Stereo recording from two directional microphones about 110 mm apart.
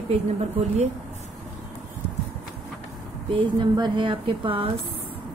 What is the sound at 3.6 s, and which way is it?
A woman's voice, 50° right (ahead or behind).